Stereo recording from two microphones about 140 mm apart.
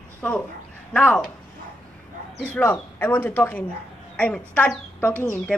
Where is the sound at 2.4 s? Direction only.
10° left (ahead or behind).